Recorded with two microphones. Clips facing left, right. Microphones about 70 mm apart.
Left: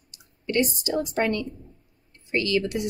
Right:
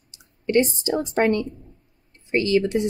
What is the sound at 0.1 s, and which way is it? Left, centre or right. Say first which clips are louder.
Clicking: right 7 dB; right.